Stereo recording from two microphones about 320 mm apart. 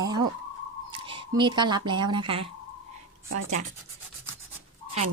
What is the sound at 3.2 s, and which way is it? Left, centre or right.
Speech, right.